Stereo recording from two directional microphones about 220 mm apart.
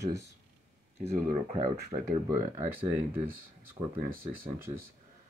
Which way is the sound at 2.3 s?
10° right (ahead or behind).